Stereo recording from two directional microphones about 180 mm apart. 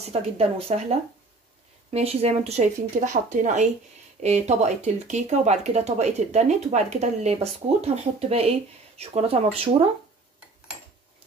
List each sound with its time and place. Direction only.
0.0 s speech: 35° right (ahead or behind)